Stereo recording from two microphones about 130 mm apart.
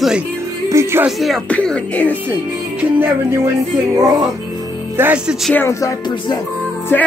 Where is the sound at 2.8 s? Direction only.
15° right (ahead or behind).